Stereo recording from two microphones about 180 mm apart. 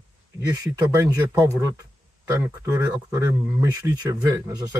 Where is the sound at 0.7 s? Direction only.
15° right (ahead or behind).